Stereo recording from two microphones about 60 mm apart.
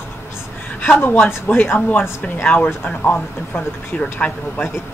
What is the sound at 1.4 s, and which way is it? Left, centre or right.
Speech, left.